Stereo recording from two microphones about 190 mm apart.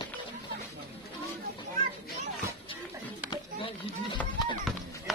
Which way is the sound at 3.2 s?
25° left (ahead or behind).